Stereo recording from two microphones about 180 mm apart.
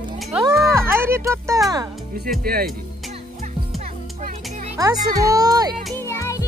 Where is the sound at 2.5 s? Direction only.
55° right (ahead or behind).